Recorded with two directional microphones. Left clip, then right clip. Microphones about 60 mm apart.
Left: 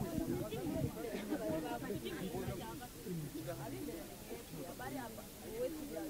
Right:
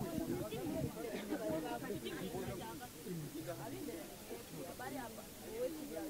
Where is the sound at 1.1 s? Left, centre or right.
Left.